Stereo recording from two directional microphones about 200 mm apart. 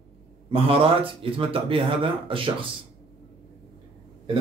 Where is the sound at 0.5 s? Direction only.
25° right (ahead or behind).